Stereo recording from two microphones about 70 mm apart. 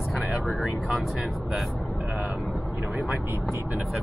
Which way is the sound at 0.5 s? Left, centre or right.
Centre.